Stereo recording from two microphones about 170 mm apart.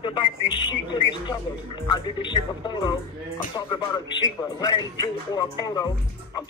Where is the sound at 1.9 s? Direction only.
25° left (ahead or behind).